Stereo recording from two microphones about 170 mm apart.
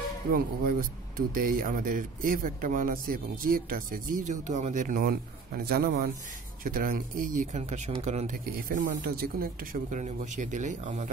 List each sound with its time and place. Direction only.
0.3 s speech: 55° right (ahead or behind)
8.5 s speech: 60° right (ahead or behind)